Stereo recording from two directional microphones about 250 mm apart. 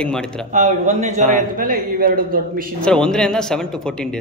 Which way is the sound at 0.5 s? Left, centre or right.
Right.